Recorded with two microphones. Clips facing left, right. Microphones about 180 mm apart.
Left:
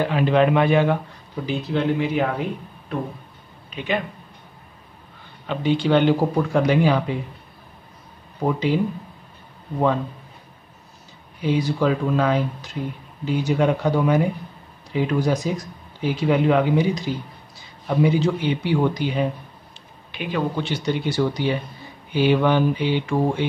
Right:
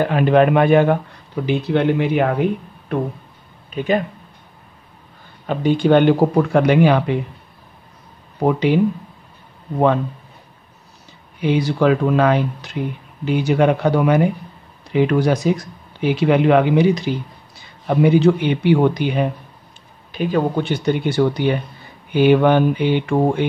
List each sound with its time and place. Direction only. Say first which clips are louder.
0.0 s a man's voice: right 4 dB; 50° right (ahead or behind)
1.4 s speech: right 5 dB; 65° right (ahead or behind)
3.7 s a man's voice: right 6 dB; 45° right (ahead or behind)
5.5 s speech: right 5 dB; 50° right (ahead or behind); by 7.2 s 65° right (ahead or behind)
8.5 s speech: right 5 dB; 70° right (ahead or behind)
11.4 s speech: right 4 dB; 70° right (ahead or behind)
17.8 s speech: right 6 dB; 60° right (ahead or behind)
20.1 s speech: right 6 dB; 40° right (ahead or behind)